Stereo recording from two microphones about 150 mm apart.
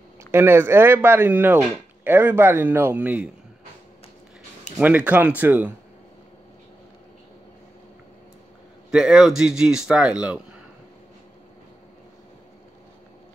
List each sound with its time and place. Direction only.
0.3 s speech: 15° right (ahead or behind)
4.7 s speech: 10° right (ahead or behind)
8.9 s a man's voice: 5° right (ahead or behind)